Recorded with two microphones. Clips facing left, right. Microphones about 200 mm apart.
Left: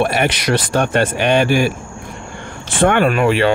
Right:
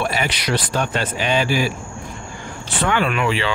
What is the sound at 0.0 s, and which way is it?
Speech, 60° left (ahead or behind).